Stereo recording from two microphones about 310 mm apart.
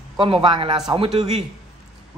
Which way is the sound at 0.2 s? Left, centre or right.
Centre.